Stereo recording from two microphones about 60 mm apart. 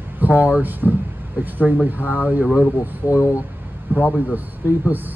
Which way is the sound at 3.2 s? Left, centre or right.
Left.